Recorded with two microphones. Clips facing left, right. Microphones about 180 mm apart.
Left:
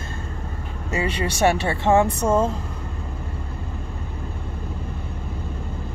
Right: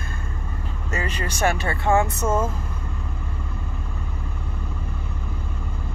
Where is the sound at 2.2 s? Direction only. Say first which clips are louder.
Left 3 dB; 15° left (ahead or behind).